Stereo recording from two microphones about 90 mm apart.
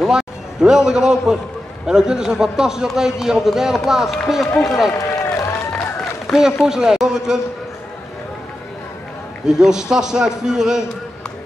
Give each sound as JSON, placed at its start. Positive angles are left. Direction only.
{"t": 0.0, "sound": "a man's voice", "side_deg": -5}
{"t": 4.9, "sound": "run", "side_deg": 35}
{"t": 6.3, "sound": "a man's voice", "side_deg": -5}
{"t": 9.5, "sound": "a man's voice", "side_deg": -5}